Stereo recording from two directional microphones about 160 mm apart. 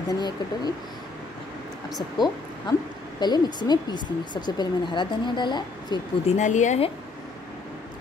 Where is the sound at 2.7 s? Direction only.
30° left (ahead or behind).